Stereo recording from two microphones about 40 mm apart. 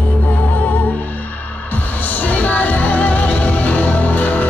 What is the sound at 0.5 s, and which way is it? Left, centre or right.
Music, left.